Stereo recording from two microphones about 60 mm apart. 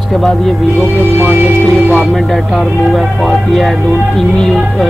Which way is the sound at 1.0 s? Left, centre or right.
Right.